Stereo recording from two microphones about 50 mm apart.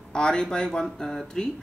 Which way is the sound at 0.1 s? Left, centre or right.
Centre.